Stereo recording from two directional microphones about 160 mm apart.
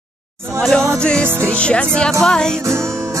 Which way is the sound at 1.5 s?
5° left (ahead or behind).